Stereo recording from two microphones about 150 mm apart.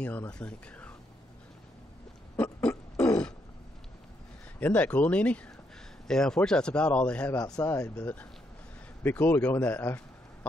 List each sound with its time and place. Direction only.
0.0 s speech: 10° left (ahead or behind)
2.3 s a sound: 10° left (ahead or behind)
4.6 s speech: 10° left (ahead or behind)
7.3 s speech: 25° left (ahead or behind)
8.0 s speech: 10° left (ahead or behind)